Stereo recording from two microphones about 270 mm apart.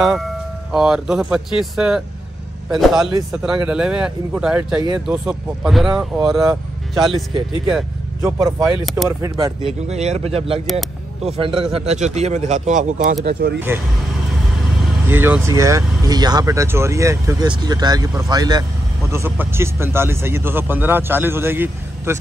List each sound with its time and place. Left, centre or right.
0.0 s speech: centre
9.2 s a man's voice: centre; by 13.6 s right
15.0 s speech: centre